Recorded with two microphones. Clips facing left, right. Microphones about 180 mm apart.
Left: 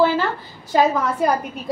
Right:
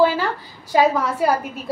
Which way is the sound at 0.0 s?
10° right (ahead or behind).